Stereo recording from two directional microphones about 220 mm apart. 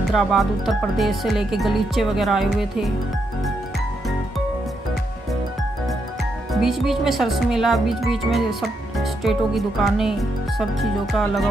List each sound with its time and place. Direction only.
0.1 s speech: centre (ahead or behind)
6.5 s speech: centre (ahead or behind)